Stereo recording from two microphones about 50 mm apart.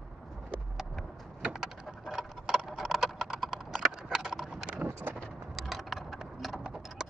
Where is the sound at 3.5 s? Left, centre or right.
Centre.